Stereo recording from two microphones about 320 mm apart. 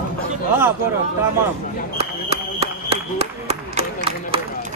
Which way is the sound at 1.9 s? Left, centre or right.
Centre.